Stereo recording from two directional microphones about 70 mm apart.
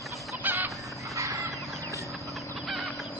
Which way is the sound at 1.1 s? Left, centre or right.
Right.